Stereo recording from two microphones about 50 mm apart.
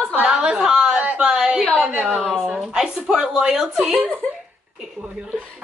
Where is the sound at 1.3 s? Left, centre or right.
Centre.